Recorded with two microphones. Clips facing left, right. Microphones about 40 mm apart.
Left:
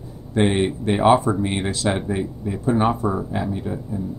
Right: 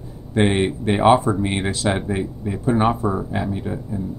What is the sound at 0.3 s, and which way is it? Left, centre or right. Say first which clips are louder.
Speech: right 1 dB; centre.